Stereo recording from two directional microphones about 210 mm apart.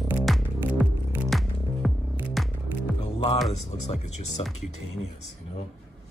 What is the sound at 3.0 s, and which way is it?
Music, 25° left (ahead or behind).